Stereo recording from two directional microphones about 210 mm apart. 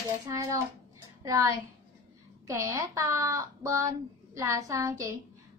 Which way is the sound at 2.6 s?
15° right (ahead or behind).